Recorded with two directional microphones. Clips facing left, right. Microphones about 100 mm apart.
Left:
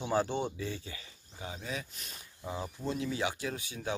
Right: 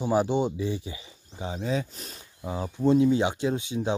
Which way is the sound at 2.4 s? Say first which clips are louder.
Right 11 dB; 20° right (ahead or behind).